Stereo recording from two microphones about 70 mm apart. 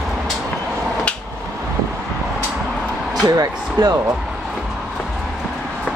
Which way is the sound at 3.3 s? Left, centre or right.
Right.